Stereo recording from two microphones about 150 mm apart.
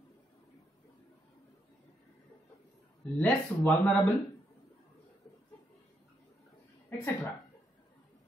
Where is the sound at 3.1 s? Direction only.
10° left (ahead or behind).